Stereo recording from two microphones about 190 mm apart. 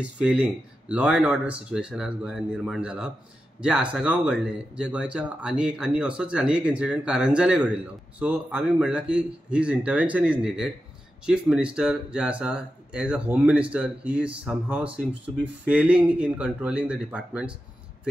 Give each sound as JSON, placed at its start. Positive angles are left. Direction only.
{"t": 0.0, "sound": "speech", "side_deg": -5}